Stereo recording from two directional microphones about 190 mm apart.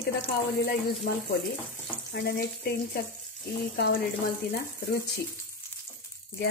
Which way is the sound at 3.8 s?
50° left (ahead or behind).